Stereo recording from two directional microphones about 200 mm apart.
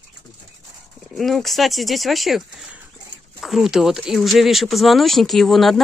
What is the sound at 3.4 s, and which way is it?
Speech, centre (ahead or behind).